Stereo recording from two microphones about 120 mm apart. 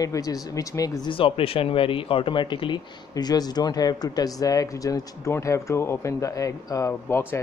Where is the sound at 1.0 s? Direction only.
50° left (ahead or behind).